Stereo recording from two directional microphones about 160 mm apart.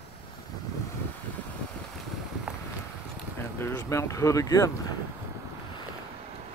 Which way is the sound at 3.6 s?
20° left (ahead or behind).